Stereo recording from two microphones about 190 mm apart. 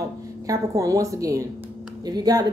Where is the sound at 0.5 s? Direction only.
15° right (ahead or behind).